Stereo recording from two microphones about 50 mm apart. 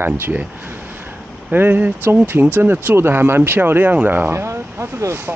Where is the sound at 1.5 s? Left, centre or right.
Right.